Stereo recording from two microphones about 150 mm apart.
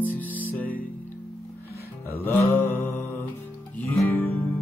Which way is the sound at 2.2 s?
15° left (ahead or behind).